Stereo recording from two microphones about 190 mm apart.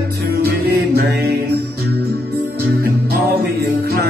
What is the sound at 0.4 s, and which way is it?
Music, 55° right (ahead or behind).